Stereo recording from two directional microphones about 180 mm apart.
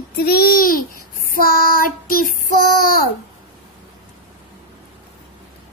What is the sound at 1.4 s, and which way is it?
Child singing, 55° left (ahead or behind).